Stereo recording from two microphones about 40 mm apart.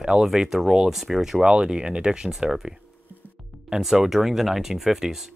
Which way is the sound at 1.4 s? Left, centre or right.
Right.